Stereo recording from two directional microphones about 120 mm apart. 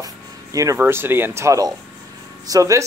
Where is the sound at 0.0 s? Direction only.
30° right (ahead or behind).